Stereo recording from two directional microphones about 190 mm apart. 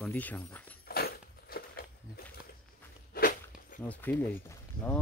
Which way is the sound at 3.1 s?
45° left (ahead or behind).